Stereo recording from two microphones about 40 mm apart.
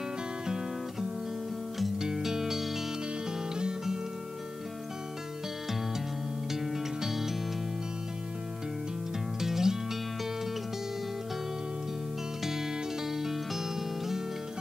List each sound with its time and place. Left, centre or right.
2.0 s music: centre
6.5 s music: centre
9.4 s music: centre
13.1 s music: centre